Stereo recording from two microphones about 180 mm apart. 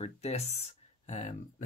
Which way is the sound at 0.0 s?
35° left (ahead or behind).